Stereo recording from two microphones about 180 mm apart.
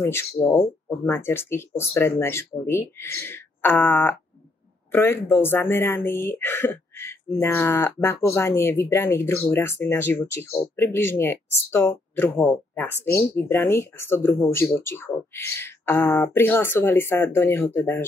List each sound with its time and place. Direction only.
0.0 s speech: 15° left (ahead or behind)